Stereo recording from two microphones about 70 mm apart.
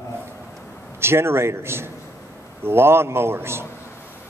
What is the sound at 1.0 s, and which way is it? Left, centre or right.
A man's voice, right.